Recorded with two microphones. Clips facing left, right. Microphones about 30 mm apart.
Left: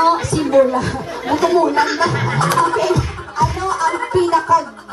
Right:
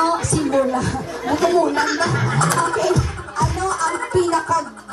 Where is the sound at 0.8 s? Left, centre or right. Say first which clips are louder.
Left 1 dB; left.